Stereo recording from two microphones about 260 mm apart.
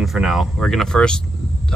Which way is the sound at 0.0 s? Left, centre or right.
Centre.